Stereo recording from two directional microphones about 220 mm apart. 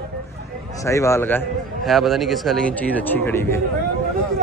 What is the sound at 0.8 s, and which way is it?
Speech, 15° left (ahead or behind).